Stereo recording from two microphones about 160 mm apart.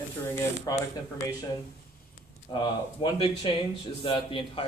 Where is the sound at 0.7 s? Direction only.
25° left (ahead or behind).